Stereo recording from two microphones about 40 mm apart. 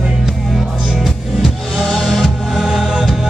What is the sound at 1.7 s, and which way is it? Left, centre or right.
Music, centre.